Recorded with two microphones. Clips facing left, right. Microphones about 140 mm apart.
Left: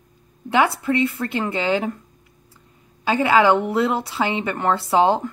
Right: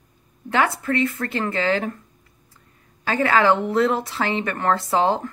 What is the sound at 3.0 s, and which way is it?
A woman's voice, 15° left (ahead or behind).